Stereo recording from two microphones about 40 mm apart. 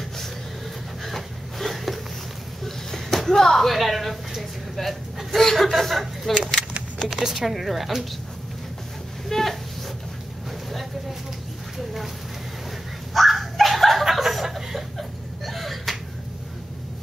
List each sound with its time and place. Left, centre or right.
1.0 s a sound: centre
5.7 s speech: centre
7.1 s speech: centre
9.3 s a sound: centre
10.7 s vehicle: centre
13.1 s dog: centre